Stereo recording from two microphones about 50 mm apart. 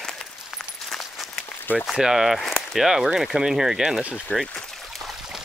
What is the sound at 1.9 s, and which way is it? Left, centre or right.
Speech, centre.